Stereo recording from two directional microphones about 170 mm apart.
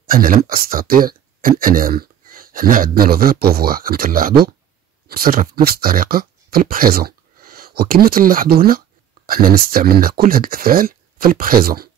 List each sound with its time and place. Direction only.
0.0 s speech: 55° right (ahead or behind)